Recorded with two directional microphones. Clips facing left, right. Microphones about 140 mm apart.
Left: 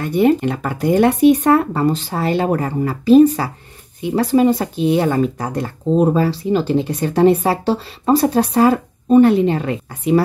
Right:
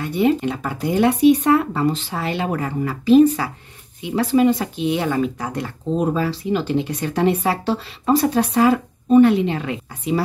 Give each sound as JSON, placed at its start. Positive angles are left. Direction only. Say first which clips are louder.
{"t": 0.0, "sound": "speech", "louder": "left 4 dB", "side_deg": 50}